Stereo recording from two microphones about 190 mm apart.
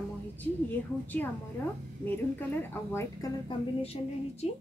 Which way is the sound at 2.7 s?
15° left (ahead or behind).